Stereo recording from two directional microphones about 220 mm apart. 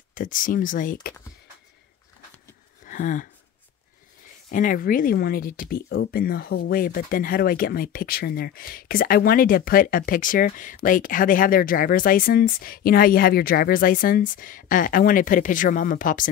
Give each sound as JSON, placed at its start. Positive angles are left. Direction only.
{"t": 0.1, "sound": "speech", "side_deg": 40}
{"t": 2.8, "sound": "a sound", "side_deg": 35}
{"t": 4.5, "sound": "speech", "side_deg": 35}